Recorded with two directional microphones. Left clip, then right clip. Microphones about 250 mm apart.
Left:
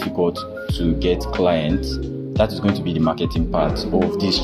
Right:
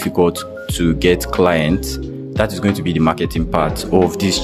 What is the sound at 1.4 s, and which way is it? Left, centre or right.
Speech, right.